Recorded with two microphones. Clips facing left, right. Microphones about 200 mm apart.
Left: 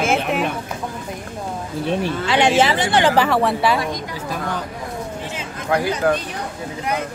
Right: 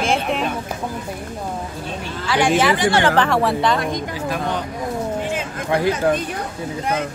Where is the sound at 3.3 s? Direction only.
Centre (ahead or behind).